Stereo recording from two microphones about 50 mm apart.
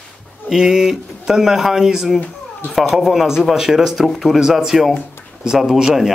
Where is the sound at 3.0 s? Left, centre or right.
Centre.